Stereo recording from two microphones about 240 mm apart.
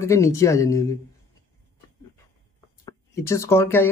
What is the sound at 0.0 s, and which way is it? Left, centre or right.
Speech, centre.